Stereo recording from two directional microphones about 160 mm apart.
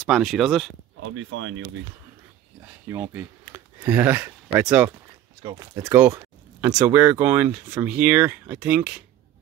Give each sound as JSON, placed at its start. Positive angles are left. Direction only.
{"t": 0.0, "sound": "speech", "side_deg": 0}
{"t": 2.9, "sound": "speech", "side_deg": -15}
{"t": 5.4, "sound": "speech", "side_deg": -25}
{"t": 5.9, "sound": "speech", "side_deg": -15}